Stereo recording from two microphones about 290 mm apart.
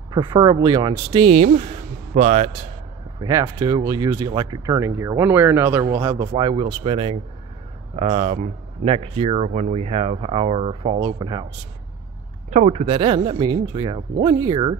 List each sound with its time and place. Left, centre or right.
0.1 s speech: centre
3.2 s speech: centre
12.4 s speech: right